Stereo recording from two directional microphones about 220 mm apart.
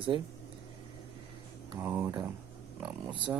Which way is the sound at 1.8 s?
10° right (ahead or behind).